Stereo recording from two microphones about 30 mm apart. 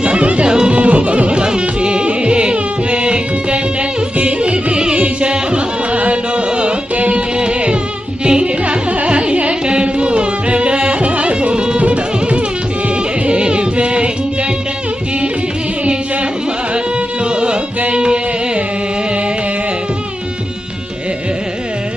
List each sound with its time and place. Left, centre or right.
0.0 s music: right
0.5 s music: right
0.7 s music: right
1.4 s carnatic music: right
5.0 s music: right
7.3 s music: right
8.3 s carnatic music: right
11.8 s music: right
13.3 s music: right
16.7 s music: right